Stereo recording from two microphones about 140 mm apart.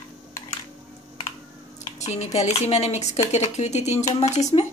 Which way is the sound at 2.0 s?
55° left (ahead or behind).